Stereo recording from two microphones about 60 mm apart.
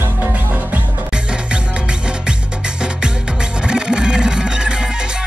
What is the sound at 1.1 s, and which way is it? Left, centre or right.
Music, centre.